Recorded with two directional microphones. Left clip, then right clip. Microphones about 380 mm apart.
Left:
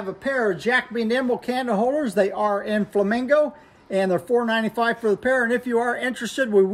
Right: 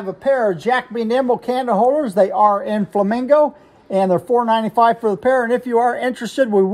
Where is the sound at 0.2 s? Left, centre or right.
Centre.